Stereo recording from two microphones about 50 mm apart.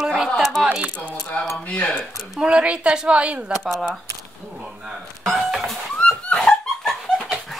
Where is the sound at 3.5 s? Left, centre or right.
Centre.